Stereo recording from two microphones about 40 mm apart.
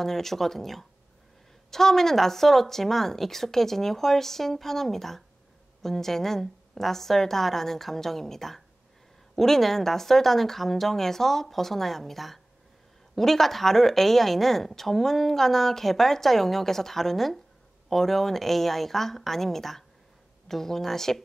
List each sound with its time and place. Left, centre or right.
0.0 s a woman's voice: centre